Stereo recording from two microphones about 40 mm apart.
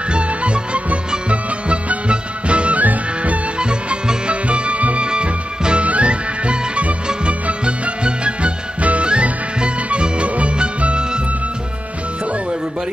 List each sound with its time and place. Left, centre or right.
0.1 s music: right
2.8 s music: right
3.5 s music: right
5.0 s music: right